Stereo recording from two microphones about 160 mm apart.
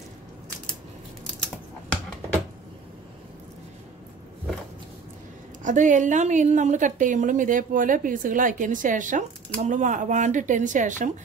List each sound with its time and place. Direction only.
5.6 s a woman's voice: 50° right (ahead or behind)